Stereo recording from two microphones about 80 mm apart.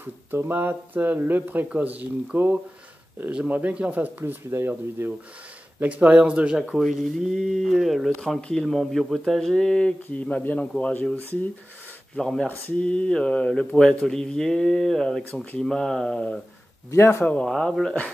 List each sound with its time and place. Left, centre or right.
0.0 s speech: right
5.8 s speech: centre
6.7 s speech: centre
8.4 s speech: centre
12.2 s speech: centre
16.9 s speech: left
17.2 s speech: centre